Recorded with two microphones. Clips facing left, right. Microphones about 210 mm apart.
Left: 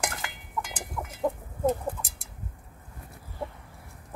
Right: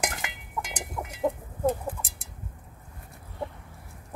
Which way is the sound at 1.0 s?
20° right (ahead or behind).